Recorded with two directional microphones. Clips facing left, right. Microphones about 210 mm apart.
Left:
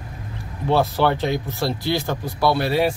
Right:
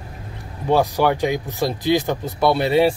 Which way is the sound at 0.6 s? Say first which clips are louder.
Right 1 dB; 15° right (ahead or behind).